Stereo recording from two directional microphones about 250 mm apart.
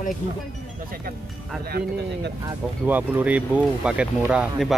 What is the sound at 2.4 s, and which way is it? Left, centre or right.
Speech, centre.